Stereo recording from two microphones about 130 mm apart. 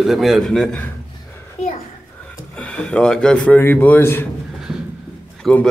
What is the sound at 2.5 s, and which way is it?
A man's voice, 10° left (ahead or behind).